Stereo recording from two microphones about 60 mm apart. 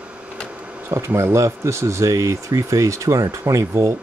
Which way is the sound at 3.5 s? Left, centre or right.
Right.